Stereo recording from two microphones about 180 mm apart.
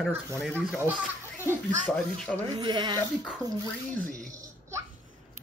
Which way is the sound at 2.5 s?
25° right (ahead or behind).